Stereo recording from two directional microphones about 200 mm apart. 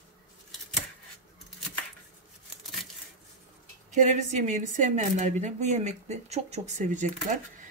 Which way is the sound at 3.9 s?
40° right (ahead or behind).